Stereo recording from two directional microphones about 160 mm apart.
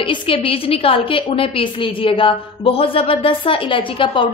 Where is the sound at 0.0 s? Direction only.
35° left (ahead or behind).